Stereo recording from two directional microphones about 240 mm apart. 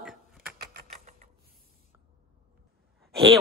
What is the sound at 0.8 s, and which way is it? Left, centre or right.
Mechanisms, right.